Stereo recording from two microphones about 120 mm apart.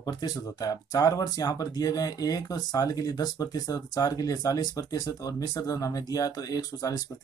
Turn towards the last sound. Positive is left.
turn(degrees=30)  # may be behind; listen again after turning